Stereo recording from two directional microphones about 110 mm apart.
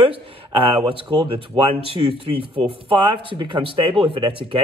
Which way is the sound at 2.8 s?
50° right (ahead or behind).